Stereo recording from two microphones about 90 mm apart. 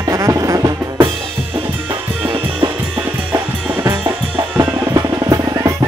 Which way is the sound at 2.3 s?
55° right (ahead or behind).